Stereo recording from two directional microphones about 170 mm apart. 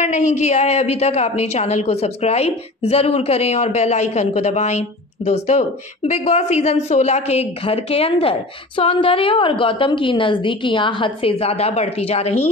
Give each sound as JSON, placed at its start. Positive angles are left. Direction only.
{"t": 0.0, "sound": "a woman's voice", "side_deg": 45}